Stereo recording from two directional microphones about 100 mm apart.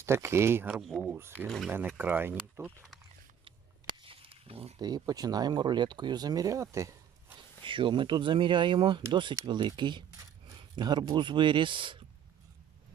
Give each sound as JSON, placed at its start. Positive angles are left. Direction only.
{"t": 0.0, "sound": "speech", "side_deg": -25}
{"t": 0.8, "sound": "speech", "side_deg": -5}
{"t": 1.7, "sound": "speech", "side_deg": -20}
{"t": 4.0, "sound": "a sound", "side_deg": -65}
{"t": 4.7, "sound": "speech", "side_deg": -40}
{"t": 7.6, "sound": "speech", "side_deg": -55}
{"t": 10.5, "sound": "a sound", "side_deg": -45}
{"t": 11.1, "sound": "speech", "side_deg": -55}